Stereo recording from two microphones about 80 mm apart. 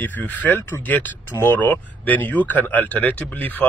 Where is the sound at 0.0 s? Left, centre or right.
Left.